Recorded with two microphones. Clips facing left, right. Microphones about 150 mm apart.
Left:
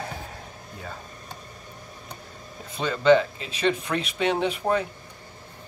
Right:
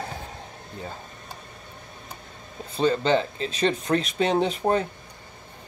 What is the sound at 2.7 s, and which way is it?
Speech, 35° right (ahead or behind).